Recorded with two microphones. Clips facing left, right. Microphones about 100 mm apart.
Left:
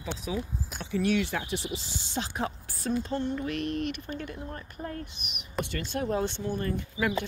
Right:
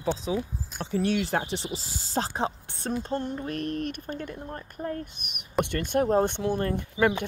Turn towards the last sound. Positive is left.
turn(degrees=-60)  # may be behind; listen again after turning